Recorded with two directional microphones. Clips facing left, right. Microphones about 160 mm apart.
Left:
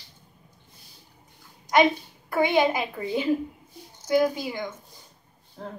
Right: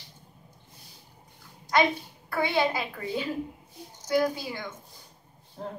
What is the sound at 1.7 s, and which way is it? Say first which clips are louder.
A woman's voice: left 4 dB; 20° left (ahead or behind).